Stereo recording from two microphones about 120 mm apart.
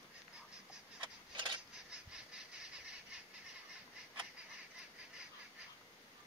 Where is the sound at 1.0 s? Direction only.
40° right (ahead or behind).